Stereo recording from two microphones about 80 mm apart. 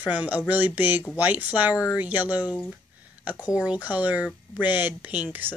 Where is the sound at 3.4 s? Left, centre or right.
Centre.